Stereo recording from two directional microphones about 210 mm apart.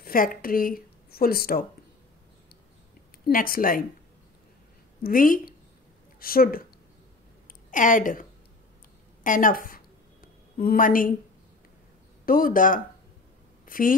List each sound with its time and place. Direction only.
0.0 s a woman's voice: 40° left (ahead or behind)
3.3 s a woman's voice: 45° left (ahead or behind)
5.0 s a woman's voice: 40° left (ahead or behind)
7.7 s a woman's voice: 40° left (ahead or behind)
12.3 s a woman's voice: 40° left (ahead or behind)